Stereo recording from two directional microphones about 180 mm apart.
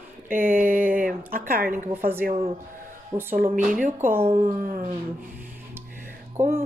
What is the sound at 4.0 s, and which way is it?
Speech, 10° right (ahead or behind).